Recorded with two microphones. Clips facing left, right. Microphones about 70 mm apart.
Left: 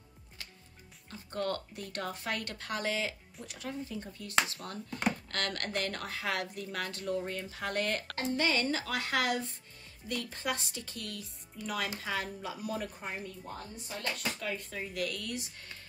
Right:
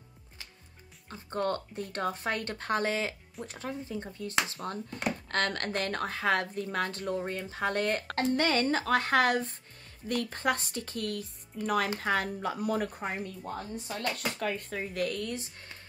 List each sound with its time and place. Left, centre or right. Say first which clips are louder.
1.1 s a woman's voice: right 4 dB; right